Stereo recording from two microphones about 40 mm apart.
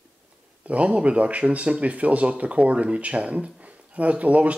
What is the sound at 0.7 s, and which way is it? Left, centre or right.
Speech, right.